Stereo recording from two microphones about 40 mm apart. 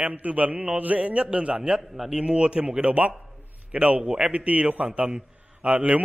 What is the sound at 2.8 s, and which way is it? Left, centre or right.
A man's voice, right.